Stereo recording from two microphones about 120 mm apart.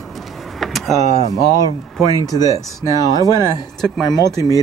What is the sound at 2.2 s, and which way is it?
Speech, 30° left (ahead or behind).